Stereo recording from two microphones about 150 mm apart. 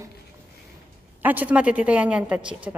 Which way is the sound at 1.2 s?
10° right (ahead or behind).